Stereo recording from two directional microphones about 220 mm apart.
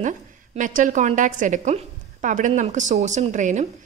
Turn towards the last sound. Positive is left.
turn(degrees=-35)  # may be behind; listen again after turning